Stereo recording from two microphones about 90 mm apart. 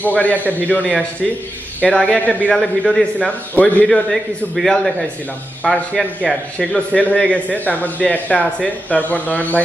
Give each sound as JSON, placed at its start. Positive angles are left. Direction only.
{"t": 0.0, "sound": "a man's voice", "side_deg": 15}
{"t": 2.5, "sound": "a man's voice", "side_deg": 0}
{"t": 3.5, "sound": "a man's voice", "side_deg": 15}
{"t": 3.8, "sound": "a man's voice", "side_deg": 0}
{"t": 6.9, "sound": "a man's voice", "side_deg": 15}